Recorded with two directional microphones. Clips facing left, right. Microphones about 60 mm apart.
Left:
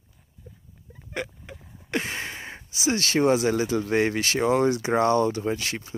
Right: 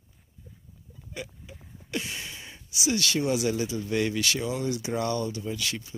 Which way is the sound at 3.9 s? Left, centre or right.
Left.